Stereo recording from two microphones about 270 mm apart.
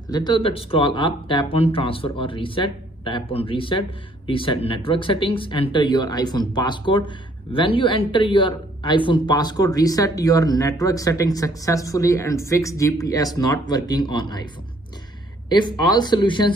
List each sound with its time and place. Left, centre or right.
0.1 s speech: centre
15.5 s speech: centre